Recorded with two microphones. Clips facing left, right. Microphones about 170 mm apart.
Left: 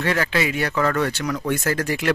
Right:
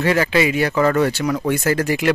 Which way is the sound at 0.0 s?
5° right (ahead or behind).